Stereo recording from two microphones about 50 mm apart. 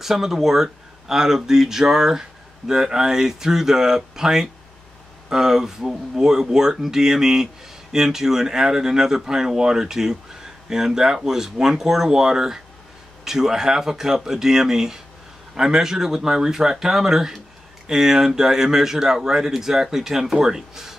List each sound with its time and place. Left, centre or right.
0.0 s speech: centre